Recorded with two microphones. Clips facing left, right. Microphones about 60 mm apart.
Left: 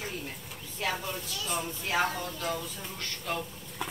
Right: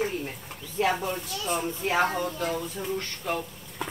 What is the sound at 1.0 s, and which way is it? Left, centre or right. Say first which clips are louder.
Speech: right 6 dB; right.